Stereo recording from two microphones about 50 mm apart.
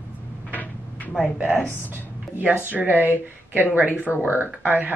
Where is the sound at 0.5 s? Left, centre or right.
Left.